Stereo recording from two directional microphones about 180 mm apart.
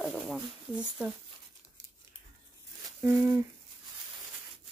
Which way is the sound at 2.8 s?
15° right (ahead or behind).